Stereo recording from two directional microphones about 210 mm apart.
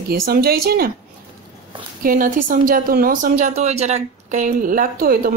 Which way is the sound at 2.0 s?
40° right (ahead or behind).